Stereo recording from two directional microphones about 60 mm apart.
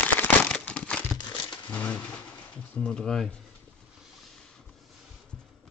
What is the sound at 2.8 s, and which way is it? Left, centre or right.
Speech, centre.